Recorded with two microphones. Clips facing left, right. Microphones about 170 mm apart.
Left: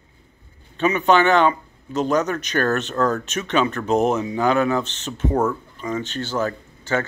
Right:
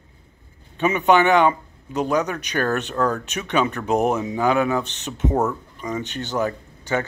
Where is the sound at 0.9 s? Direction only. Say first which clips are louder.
Even; 15° right (ahead or behind).